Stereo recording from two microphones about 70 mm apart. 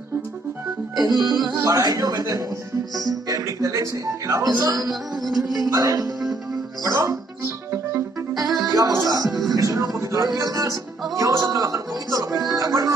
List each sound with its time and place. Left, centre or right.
0.9 s music: right
1.7 s speech: right
5.1 s music: centre
5.7 s speech: right
6.8 s music: right
8.4 s music: right
9.1 s speech: right
9.5 s speech: right